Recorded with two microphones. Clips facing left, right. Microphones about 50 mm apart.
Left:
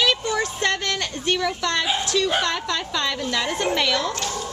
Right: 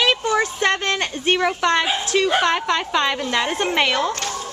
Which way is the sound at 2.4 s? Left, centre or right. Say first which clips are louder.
Right 5 dB; right.